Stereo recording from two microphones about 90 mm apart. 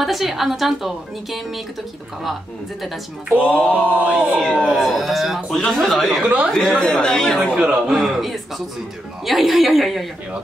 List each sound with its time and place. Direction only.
0.0 s a woman's voice: centre (ahead or behind)
3.4 s a woman's voice: 10° left (ahead or behind)
6.2 s speech: 15° right (ahead or behind)
6.5 s speech: 5° left (ahead or behind)
7.5 s a woman's voice: 5° right (ahead or behind)